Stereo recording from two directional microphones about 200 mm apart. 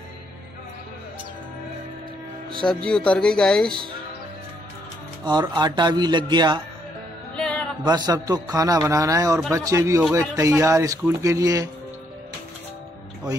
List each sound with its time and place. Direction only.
2.6 s speech: 5° left (ahead or behind)
5.2 s speech: 20° right (ahead or behind)
7.3 s music: 5° left (ahead or behind)
7.8 s a man's voice: 20° right (ahead or behind)